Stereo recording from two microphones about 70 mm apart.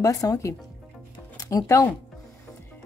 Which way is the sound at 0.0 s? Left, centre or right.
Left.